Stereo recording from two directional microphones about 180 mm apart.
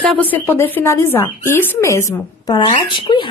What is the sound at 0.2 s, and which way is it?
Speech, 10° left (ahead or behind).